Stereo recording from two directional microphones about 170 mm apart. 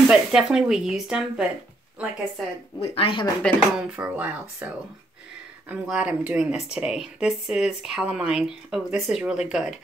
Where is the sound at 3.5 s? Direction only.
5° left (ahead or behind).